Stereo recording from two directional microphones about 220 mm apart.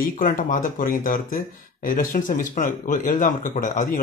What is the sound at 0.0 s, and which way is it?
Speech, 40° left (ahead or behind).